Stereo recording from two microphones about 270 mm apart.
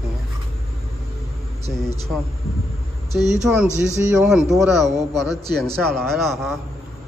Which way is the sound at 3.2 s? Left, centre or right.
Centre.